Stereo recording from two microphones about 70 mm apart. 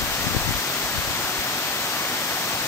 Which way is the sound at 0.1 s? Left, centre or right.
Left.